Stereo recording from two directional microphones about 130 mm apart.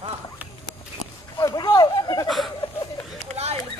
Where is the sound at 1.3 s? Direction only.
30° left (ahead or behind).